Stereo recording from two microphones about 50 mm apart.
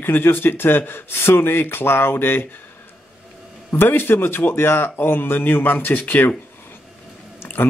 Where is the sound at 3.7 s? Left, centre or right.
Left.